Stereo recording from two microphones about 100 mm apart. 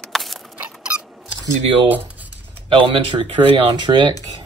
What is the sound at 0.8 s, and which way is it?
Squeak, 5° right (ahead or behind).